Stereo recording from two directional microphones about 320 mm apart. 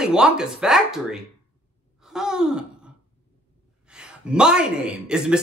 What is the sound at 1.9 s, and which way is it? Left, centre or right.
Sigh, centre.